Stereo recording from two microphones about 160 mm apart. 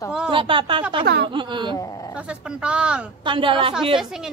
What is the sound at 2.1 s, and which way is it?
Speech, 5° right (ahead or behind).